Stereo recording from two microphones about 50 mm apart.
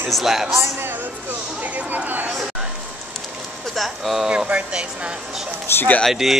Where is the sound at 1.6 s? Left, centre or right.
Right.